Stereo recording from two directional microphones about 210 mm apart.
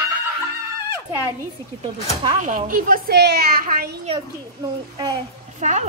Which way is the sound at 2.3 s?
35° right (ahead or behind).